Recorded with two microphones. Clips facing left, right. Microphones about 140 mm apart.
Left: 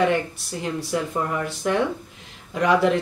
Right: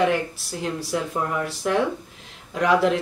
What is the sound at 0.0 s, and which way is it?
Speech, centre (ahead or behind).